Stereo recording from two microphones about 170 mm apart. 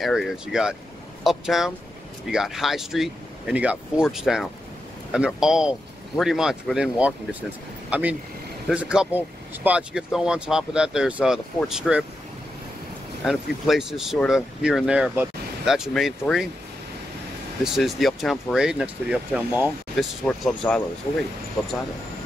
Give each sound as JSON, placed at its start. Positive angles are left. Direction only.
{"t": 0.0, "sound": "speech", "side_deg": 0}
{"t": 13.2, "sound": "speech", "side_deg": 0}
{"t": 17.7, "sound": "speech", "side_deg": 0}
{"t": 20.2, "sound": "speech", "side_deg": 5}